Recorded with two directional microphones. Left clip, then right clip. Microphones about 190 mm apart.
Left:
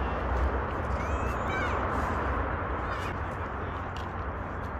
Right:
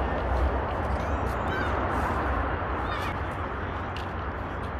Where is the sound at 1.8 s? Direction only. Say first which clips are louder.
Right 2 dB; 50° left (ahead or behind).